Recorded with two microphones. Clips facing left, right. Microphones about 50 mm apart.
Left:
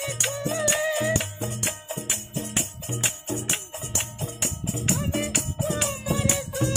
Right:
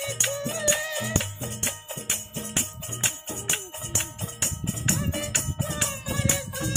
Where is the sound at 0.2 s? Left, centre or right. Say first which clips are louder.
Left 3 dB; centre.